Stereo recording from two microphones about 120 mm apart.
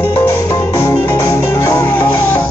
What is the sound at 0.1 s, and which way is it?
Music, 20° left (ahead or behind).